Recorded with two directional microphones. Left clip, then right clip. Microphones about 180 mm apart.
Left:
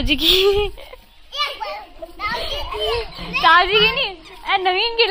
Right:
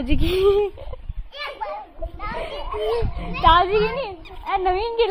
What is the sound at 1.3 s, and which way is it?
Children playing, 35° left (ahead or behind).